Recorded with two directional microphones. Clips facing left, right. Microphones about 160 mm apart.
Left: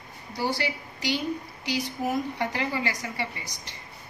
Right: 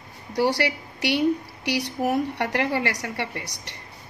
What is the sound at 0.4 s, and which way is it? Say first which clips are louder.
A woman's voice: right 6 dB; 70° right (ahead or behind).